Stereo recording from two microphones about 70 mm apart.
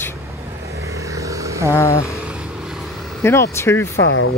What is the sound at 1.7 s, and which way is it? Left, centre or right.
Speech, left.